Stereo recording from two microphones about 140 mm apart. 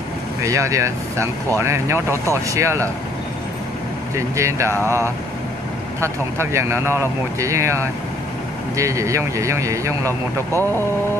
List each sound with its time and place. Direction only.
0.4 s speech: 20° right (ahead or behind)
4.1 s speech: 20° right (ahead or behind)
5.9 s speech: 20° right (ahead or behind)